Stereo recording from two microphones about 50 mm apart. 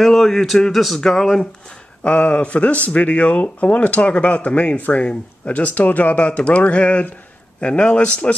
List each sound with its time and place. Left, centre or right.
0.0 s speech: centre
2.0 s speech: left